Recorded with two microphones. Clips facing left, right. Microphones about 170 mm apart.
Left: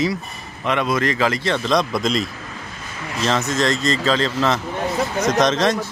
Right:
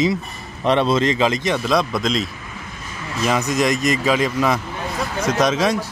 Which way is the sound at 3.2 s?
15° right (ahead or behind).